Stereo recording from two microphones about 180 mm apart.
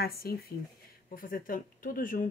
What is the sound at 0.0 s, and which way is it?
Speech, 60° left (ahead or behind).